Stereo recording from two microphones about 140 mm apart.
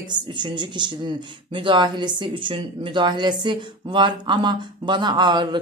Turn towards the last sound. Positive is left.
turn(degrees=-35)  # may be behind; listen again after turning